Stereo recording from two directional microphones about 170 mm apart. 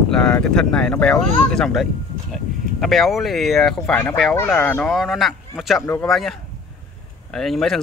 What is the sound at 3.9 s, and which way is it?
Speech, 15° left (ahead or behind).